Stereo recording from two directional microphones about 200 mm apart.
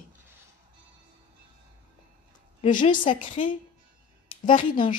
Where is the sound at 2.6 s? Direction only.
40° left (ahead or behind).